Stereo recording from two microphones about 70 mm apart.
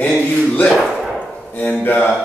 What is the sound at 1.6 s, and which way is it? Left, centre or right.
Speech, left.